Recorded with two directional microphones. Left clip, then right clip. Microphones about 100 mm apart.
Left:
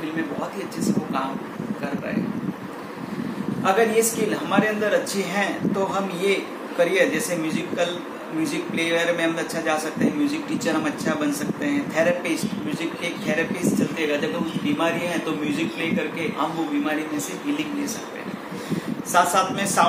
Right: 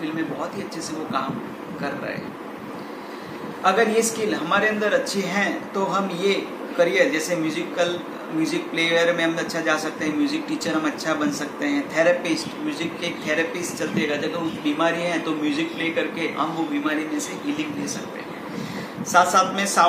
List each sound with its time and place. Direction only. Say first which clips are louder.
3.6 s a man's voice: even; 10° left (ahead or behind)
19.1 s a man's voice: right 2 dB; 10° left (ahead or behind)